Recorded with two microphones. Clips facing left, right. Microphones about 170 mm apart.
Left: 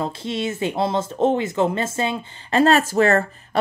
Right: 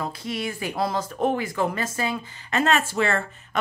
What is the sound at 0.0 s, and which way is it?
Speech, 25° left (ahead or behind).